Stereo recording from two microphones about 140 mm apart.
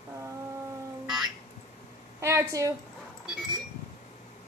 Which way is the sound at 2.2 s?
20° right (ahead or behind).